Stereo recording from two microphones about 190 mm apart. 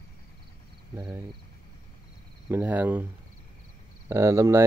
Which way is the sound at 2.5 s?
10° right (ahead or behind).